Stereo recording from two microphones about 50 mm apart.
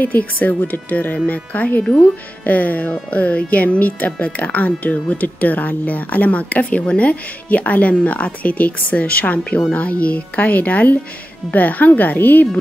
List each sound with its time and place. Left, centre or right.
0.0 s speech: left